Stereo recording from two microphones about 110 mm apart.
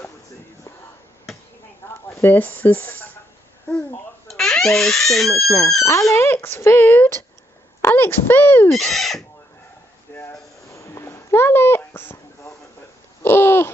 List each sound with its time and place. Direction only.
2.0 s speech: 20° left (ahead or behind)
4.3 s speech: 5° left (ahead or behind)
5.3 s speech: 30° left (ahead or behind)
8.7 s speech: centre (ahead or behind)
10.1 s a sound: 25° left (ahead or behind)
13.2 s babbling: 20° left (ahead or behind)